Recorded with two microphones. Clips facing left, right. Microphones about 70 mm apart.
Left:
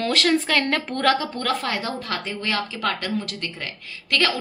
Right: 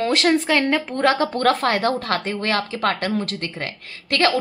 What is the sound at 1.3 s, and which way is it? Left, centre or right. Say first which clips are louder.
A woman's voice: right 6 dB; right.